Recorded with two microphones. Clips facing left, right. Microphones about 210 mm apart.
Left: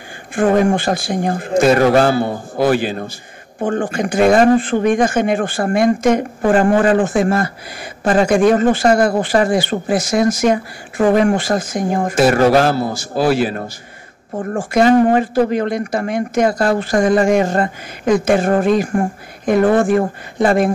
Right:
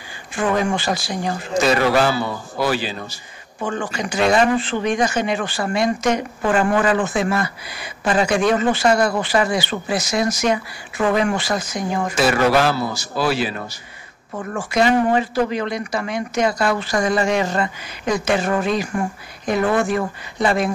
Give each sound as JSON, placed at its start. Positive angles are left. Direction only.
{"t": 0.4, "sound": "speech", "side_deg": 55}